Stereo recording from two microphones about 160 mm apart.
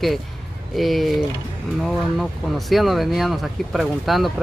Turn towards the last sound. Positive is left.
turn(degrees=0)  # may be behind; listen again after turning